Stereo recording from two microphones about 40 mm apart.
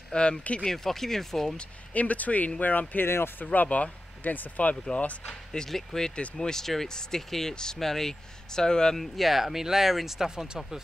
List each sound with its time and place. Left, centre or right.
0.1 s speech: left
0.7 s speech: centre
2.0 s speech: left
4.8 s speech: left
5.7 s speech: centre
6.0 s speech: centre
8.9 s speech: centre